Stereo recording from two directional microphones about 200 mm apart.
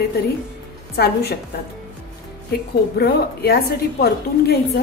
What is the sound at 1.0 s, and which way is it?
Speech, 55° left (ahead or behind).